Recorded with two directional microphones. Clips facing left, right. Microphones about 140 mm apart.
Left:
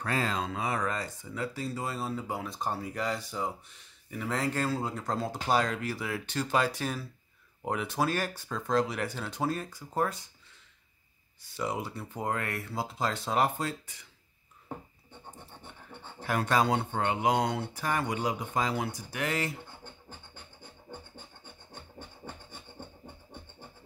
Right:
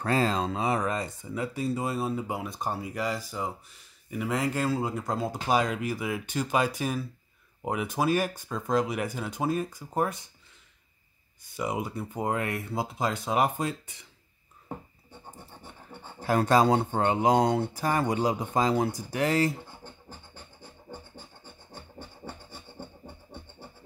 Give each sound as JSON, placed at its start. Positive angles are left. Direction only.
{"t": 0.0, "sound": "speech", "side_deg": -30}
{"t": 11.5, "sound": "speech", "side_deg": -15}
{"t": 16.2, "sound": "speech", "side_deg": -35}